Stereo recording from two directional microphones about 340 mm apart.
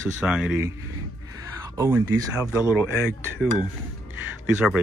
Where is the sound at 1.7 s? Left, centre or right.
Centre.